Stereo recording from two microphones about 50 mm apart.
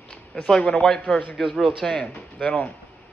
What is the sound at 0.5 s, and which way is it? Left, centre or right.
A man's voice, left.